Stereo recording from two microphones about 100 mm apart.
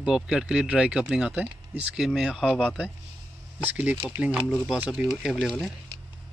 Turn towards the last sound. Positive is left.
turn(degrees=5)  # may be behind; listen again after turning